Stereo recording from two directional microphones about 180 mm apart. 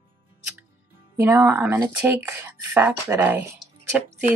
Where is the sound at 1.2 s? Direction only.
10° right (ahead or behind).